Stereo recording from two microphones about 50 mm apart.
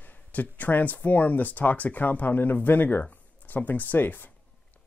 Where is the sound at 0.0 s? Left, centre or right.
Left.